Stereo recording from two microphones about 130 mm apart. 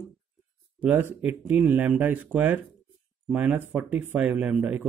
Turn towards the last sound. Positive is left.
turn(degrees=-10)  # may be behind; listen again after turning